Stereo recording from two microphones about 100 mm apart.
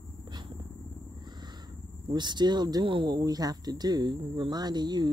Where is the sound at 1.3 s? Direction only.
45° right (ahead or behind).